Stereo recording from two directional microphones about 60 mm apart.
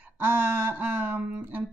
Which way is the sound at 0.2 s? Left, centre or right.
Right.